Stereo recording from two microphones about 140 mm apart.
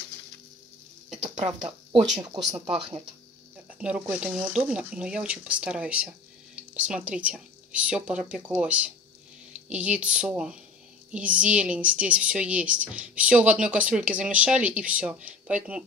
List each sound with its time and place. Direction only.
2.2 s speech: 30° right (ahead or behind)
3.8 s a woman's voice: 10° right (ahead or behind)